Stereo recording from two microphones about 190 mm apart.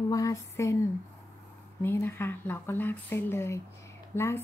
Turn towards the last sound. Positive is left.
turn(degrees=15)  # may be behind; listen again after turning